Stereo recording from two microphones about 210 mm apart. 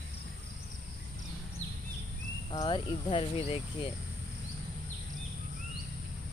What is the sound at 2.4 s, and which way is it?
Speech, 20° left (ahead or behind).